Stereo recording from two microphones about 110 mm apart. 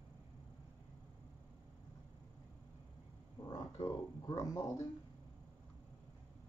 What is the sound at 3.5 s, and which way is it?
Speech, 35° left (ahead or behind).